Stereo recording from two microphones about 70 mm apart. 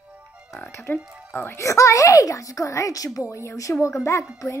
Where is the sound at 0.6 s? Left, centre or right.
Left.